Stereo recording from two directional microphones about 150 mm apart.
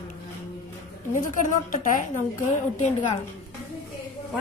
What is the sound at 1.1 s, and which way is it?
A woman's voice, 55° left (ahead or behind).